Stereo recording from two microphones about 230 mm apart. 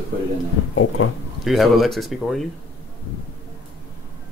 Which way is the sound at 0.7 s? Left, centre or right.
Left.